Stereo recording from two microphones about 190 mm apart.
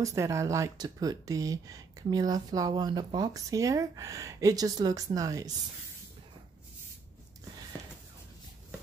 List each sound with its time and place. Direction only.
0.0 s speech: 15° right (ahead or behind)